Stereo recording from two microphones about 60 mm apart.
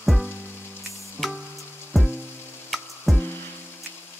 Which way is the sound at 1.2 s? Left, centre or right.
Centre.